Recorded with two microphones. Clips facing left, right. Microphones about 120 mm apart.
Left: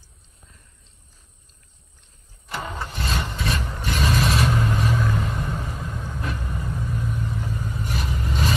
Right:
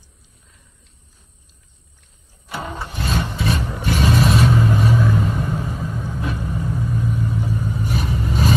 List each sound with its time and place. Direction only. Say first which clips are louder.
2.4 s vehicle: right 2 dB; 5° right (ahead or behind)
3.8 s vehicle: right 5 dB; 45° right (ahead or behind)
4.2 s vehicle: right 5 dB; centre (ahead or behind)
7.9 s vehicle: right 5 dB; 45° right (ahead or behind)